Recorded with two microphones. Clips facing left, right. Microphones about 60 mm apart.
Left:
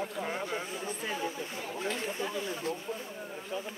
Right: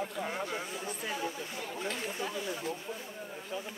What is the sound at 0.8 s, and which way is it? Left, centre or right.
Speech, left.